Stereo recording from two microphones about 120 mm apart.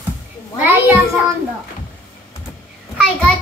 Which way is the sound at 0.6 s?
15° right (ahead or behind).